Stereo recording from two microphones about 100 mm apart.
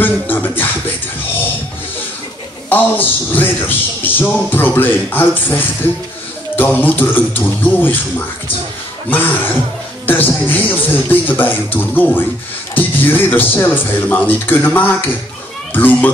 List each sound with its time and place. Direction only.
0.0 s music: 20° left (ahead or behind)
2.7 s speech: 20° left (ahead or behind)
9.1 s a child's voice: 20° left (ahead or behind)